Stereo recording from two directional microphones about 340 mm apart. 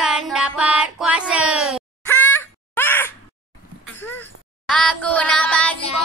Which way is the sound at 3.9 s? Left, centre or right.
Centre.